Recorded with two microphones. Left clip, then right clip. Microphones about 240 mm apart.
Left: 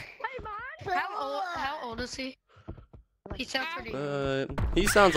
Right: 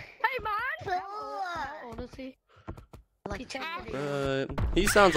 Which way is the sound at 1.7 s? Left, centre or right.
Left.